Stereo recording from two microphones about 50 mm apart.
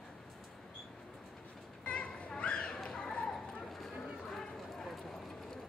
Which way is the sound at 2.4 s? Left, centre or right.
Left.